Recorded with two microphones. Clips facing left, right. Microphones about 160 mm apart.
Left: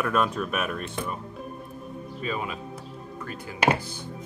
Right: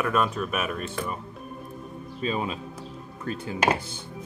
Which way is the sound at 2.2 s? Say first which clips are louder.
Right 3 dB; 25° right (ahead or behind).